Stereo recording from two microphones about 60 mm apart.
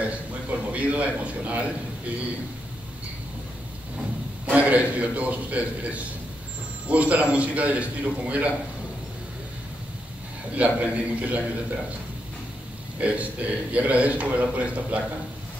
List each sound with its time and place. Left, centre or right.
0.0 s a sound: right
4.5 s a man's voice: right
10.5 s a man's voice: right
13.0 s a man's voice: right